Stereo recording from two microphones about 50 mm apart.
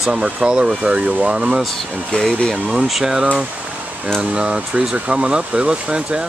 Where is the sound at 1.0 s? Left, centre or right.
Right.